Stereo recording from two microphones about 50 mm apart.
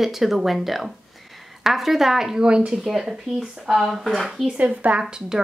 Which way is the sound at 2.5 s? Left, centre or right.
Centre.